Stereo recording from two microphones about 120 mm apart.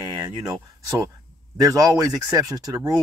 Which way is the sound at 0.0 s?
35° right (ahead or behind).